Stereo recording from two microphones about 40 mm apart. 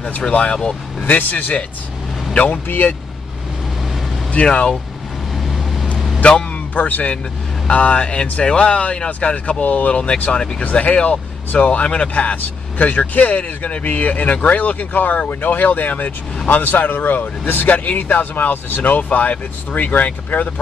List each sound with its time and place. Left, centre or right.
0.3 s speech: left
1.0 s speech: left
2.3 s speech: left
4.3 s speech: left
5.9 s vehicle: centre
6.2 s a man's voice: left
12.4 s speech: left
17.6 s speech: left